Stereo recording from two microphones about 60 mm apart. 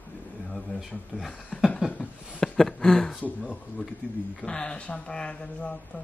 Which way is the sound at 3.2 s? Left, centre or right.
Left.